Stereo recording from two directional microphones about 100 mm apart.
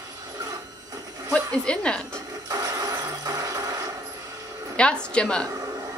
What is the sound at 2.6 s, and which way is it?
Vehicle, 35° right (ahead or behind).